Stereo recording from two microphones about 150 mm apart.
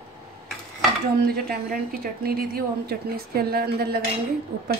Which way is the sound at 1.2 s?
90° right.